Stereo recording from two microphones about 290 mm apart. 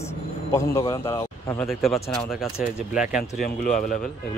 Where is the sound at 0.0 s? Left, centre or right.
Centre.